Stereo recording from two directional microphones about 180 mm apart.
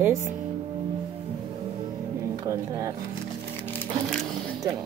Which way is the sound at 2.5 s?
20° right (ahead or behind).